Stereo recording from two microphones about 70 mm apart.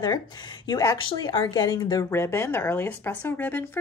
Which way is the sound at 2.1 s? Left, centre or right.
Left.